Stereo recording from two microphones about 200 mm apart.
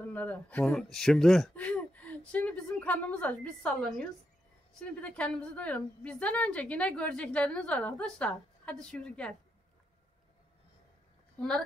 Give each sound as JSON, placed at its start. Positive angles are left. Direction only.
{"t": 0.1, "sound": "a woman's voice", "side_deg": 10}
{"t": 11.3, "sound": "speech", "side_deg": 5}